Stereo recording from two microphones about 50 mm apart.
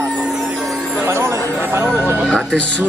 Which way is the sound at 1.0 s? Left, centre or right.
Right.